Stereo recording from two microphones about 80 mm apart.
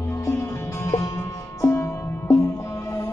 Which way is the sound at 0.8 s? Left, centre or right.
Left.